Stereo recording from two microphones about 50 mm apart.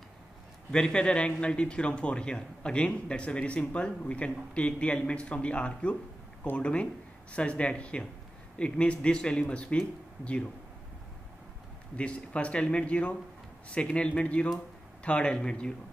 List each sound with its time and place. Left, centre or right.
0.7 s speech: centre
12.0 s speech: left